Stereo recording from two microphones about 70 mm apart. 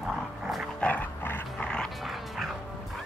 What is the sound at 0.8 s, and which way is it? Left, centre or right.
Dog, left.